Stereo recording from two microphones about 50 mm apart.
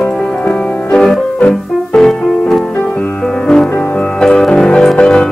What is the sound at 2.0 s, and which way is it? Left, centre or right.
Music, centre.